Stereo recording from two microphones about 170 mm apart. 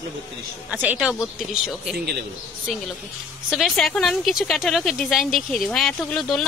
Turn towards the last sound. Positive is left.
turn(degrees=5)  # may be behind; listen again after turning